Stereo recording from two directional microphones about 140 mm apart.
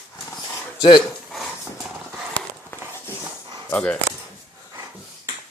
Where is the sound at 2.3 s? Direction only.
15° left (ahead or behind).